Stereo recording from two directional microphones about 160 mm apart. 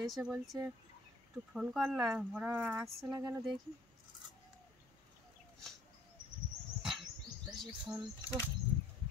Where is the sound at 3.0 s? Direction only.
20° right (ahead or behind).